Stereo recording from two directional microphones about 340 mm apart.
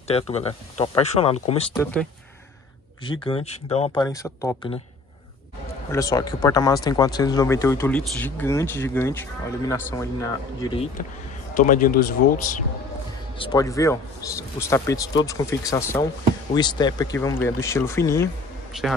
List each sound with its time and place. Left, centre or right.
0.1 s speech: centre
3.0 s speech: centre
5.9 s speech: centre
13.4 s speech: centre